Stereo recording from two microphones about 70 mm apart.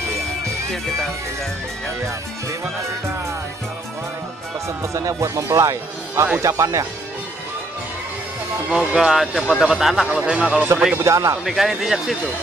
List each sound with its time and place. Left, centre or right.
4.6 s speech: right
8.6 s speech: centre
10.0 s speech: centre
11.0 s speech: right
11.4 s speech: centre